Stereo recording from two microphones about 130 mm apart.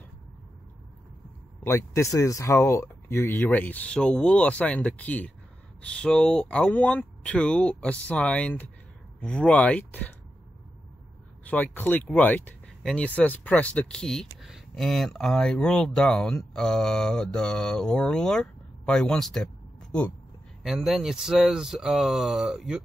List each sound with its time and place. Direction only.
1.6 s speech: 20° left (ahead or behind)
11.4 s speech: 10° left (ahead or behind); by 22.8 s 5° right (ahead or behind)